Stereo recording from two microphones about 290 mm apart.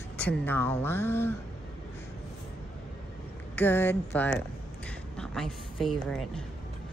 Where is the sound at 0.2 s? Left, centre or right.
Centre.